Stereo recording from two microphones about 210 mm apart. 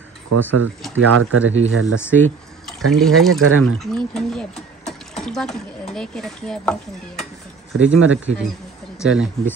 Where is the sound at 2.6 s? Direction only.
Centre (ahead or behind).